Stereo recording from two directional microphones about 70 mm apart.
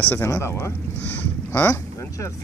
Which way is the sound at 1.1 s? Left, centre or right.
Left.